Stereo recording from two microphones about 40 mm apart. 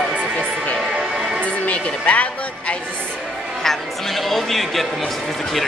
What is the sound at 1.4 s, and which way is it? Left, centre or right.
Music, left.